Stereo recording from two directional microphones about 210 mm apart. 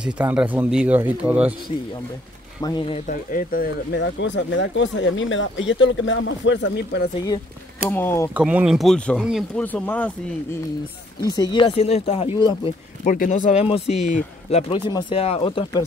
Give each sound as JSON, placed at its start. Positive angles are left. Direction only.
{"t": 0.0, "sound": "speech", "side_deg": -5}
{"t": 2.6, "sound": "speech", "side_deg": 20}
{"t": 3.1, "sound": "speech", "side_deg": 40}
{"t": 7.9, "sound": "speech", "side_deg": 10}
{"t": 8.4, "sound": "speech", "side_deg": -5}
{"t": 11.2, "sound": "speech", "side_deg": 15}
{"t": 13.0, "sound": "speech", "side_deg": 40}